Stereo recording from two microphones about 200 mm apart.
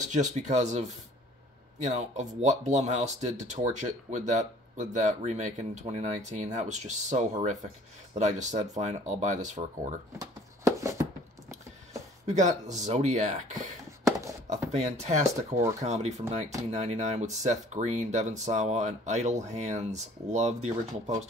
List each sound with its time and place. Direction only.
0.0 s speech: 35° right (ahead or behind)
10.1 s a sound: 15° right (ahead or behind)
12.3 s speech: 35° right (ahead or behind)
14.7 s speech: 35° right (ahead or behind)